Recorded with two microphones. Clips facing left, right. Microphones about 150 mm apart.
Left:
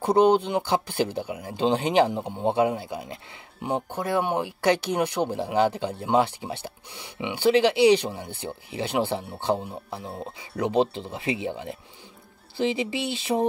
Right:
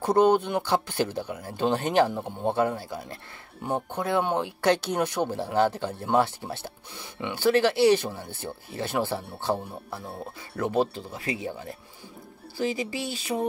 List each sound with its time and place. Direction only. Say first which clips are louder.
0.0 s speech: left 1 dB; 15° left (ahead or behind); by 13.5 s 30° left (ahead or behind)